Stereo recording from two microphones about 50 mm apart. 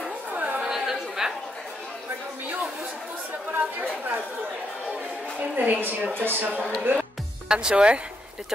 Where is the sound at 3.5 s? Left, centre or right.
Right.